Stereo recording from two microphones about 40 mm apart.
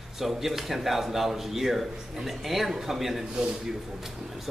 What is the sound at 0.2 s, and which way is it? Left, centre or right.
A man's voice, centre.